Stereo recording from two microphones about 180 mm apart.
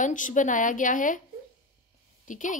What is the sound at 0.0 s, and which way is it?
A woman's voice, 45° left (ahead or behind).